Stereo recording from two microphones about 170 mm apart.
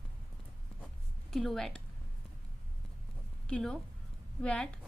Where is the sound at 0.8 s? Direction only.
Centre (ahead or behind).